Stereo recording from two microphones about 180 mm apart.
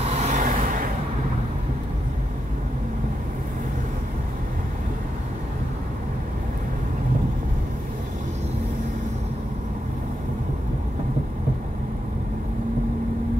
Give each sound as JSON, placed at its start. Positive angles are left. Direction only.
{"t": 0.0, "sound": "vehicle", "side_deg": -40}